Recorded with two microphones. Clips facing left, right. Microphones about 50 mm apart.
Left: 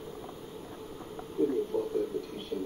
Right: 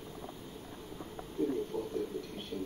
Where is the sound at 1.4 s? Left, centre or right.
Centre.